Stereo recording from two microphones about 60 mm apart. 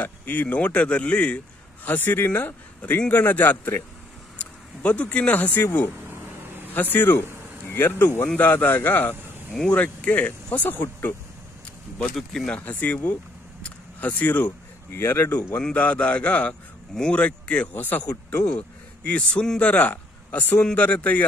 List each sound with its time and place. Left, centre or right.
0.0 s speech: left
1.9 s speech: left
12.0 s speech: centre
12.5 s speech: left
14.9 s speech: left
15.7 s a man's voice: left